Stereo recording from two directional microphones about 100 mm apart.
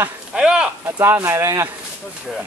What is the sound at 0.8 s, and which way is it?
Speech, 25° right (ahead or behind).